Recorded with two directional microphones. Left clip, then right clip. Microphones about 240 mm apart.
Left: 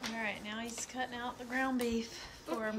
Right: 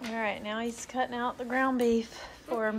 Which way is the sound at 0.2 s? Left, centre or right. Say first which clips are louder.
Right 11 dB; centre.